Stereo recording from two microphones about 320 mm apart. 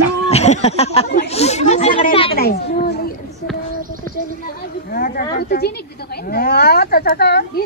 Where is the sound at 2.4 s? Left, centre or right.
Left.